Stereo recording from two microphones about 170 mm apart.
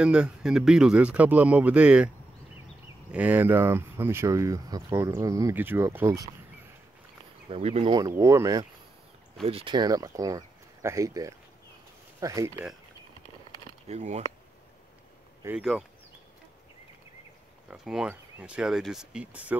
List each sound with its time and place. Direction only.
0.0 s speech: 5° right (ahead or behind)
3.1 s speech: 10° right (ahead or behind)
7.4 s speech: 35° right (ahead or behind)
7.9 s speech: 20° right (ahead or behind)
9.4 s speech: 35° right (ahead or behind)
13.8 s speech: 40° right (ahead or behind)
15.4 s speech: 15° right (ahead or behind)
17.6 s speech: 5° right (ahead or behind)